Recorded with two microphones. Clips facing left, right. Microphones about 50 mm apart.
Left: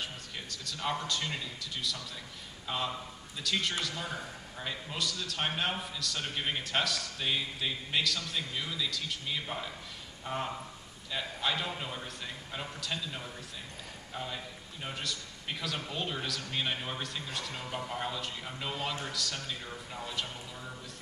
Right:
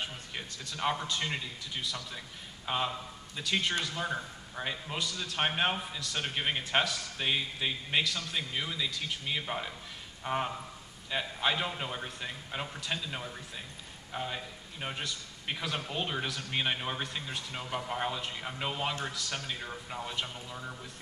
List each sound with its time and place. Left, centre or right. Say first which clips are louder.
0.0 s a man's voice: right 2 dB; right